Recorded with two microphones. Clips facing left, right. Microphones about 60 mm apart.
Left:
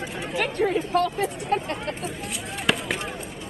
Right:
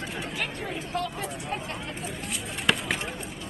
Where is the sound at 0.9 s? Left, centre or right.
Left.